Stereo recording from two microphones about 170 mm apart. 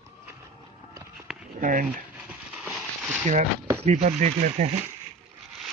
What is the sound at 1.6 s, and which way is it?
Speech, 50° right (ahead or behind).